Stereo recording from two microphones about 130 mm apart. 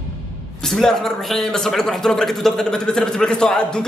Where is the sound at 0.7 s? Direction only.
Centre (ahead or behind).